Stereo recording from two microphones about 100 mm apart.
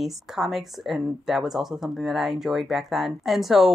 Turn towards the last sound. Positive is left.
turn(degrees=0)  # may be behind; listen again after turning